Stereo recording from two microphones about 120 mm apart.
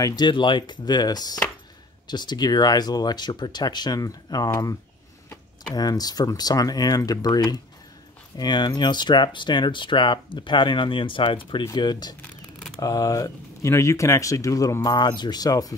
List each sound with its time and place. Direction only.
0.0 s speech: 35° left (ahead or behind)
5.8 s speech: 30° left (ahead or behind)